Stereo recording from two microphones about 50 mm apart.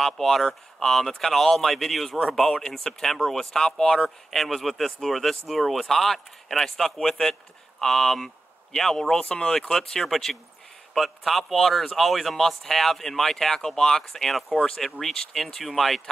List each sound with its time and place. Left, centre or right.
0.0 s speech: centre